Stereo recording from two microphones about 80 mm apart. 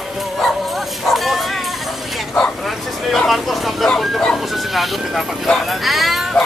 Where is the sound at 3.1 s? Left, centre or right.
Centre.